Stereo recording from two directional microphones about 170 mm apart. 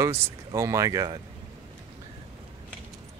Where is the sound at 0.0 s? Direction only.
15° right (ahead or behind).